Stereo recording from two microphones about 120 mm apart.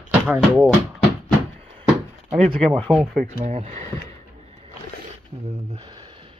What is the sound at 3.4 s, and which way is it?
Speech, 80° right.